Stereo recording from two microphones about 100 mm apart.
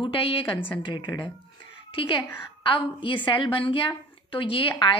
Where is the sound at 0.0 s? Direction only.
65° left (ahead or behind).